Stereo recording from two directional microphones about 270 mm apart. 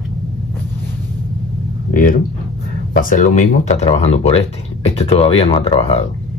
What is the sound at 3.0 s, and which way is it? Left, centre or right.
Speech, left.